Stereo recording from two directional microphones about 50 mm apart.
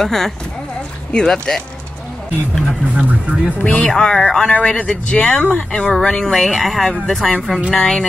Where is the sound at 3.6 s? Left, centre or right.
Left.